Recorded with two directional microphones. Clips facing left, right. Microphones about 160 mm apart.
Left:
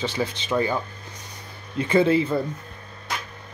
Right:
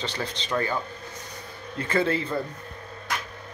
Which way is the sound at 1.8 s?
15° left (ahead or behind).